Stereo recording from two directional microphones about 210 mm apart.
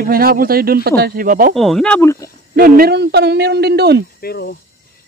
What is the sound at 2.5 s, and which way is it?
Speech, 45° right (ahead or behind).